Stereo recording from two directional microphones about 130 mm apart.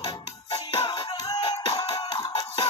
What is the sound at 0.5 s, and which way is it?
Music, 35° left (ahead or behind).